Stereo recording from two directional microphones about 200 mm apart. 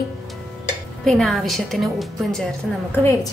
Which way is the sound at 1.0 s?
Centre (ahead or behind).